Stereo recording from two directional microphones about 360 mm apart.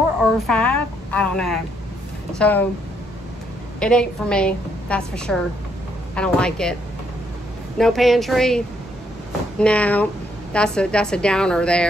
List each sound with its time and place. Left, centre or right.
0.2 s a woman's voice: centre
3.8 s a woman's voice: centre